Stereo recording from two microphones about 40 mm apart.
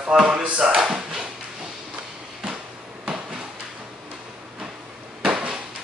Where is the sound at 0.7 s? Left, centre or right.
Centre.